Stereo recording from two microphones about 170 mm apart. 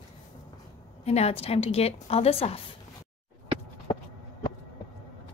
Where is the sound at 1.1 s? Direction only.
35° left (ahead or behind).